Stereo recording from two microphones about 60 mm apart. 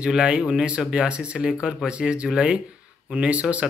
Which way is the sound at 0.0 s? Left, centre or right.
Centre.